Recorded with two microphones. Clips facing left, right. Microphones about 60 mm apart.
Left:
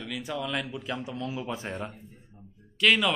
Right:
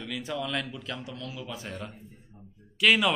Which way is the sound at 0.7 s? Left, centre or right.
Centre.